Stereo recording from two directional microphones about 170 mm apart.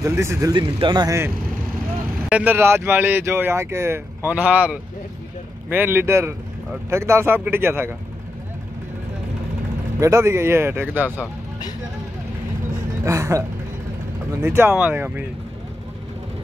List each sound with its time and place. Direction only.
0.0 s speech: 15° right (ahead or behind)
9.9 s speech: 15° right (ahead or behind)
13.0 s speech: 15° right (ahead or behind)
14.4 s speech: 15° right (ahead or behind)